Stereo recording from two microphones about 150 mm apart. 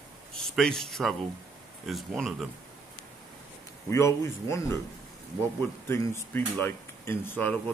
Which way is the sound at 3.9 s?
20° left (ahead or behind).